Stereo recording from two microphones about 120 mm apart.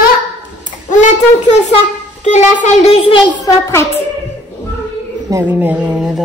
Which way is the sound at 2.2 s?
85° left.